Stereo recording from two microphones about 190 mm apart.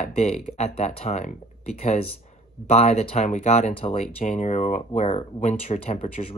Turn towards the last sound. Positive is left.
turn(degrees=30)  # may be behind; listen again after turning